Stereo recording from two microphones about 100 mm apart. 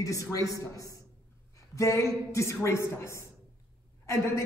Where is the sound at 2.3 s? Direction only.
30° left (ahead or behind).